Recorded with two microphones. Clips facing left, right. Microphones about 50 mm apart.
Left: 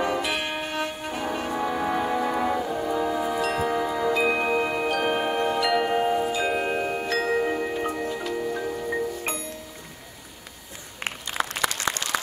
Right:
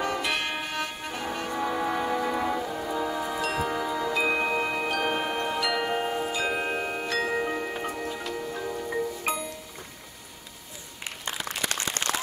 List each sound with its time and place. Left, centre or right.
0.0 s music: centre
5.4 s mallet percussion: centre
8.4 s music: centre
9.2 s music: centre
11.1 s a sound: left
12.0 s a sound: right